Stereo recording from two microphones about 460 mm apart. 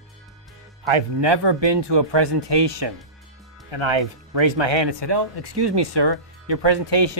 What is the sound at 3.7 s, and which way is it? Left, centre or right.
Speech, right.